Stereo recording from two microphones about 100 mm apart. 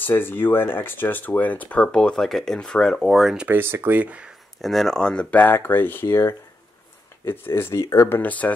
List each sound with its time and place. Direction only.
0.0 s speech: 20° left (ahead or behind); by 3.4 s centre (ahead or behind)
3.4 s speech: 20° right (ahead or behind)
4.6 s speech: centre (ahead or behind); by 8.2 s 30° left (ahead or behind)
8.2 s speech: 15° left (ahead or behind)